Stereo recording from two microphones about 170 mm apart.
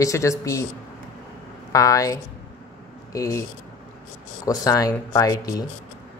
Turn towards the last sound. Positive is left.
turn(degrees=20)  # may be behind; listen again after turning